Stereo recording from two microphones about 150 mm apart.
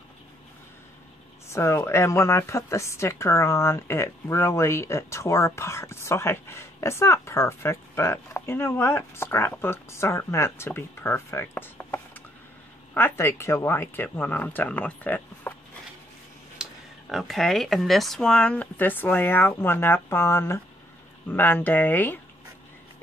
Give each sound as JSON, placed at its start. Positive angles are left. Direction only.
{"t": 1.5, "sound": "speech", "side_deg": 15}
{"t": 16.6, "sound": "a sound", "side_deg": -5}
{"t": 17.1, "sound": "speech", "side_deg": 0}